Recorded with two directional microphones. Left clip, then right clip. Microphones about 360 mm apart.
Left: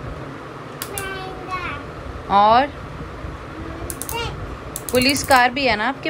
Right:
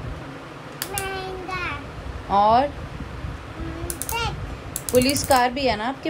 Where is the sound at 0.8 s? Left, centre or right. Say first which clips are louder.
Even; centre.